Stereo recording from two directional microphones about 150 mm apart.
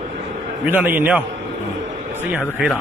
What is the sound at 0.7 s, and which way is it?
Speech, 15° right (ahead or behind).